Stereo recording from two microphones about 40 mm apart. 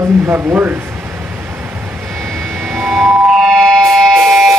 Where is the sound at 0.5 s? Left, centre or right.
Right.